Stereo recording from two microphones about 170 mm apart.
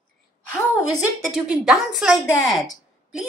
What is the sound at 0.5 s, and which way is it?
Speech, 15° left (ahead or behind).